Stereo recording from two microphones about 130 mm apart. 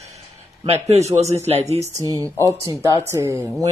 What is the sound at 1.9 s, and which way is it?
Speech, 25° right (ahead or behind).